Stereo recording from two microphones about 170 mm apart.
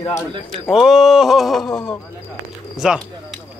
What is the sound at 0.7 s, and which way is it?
Speech, centre (ahead or behind).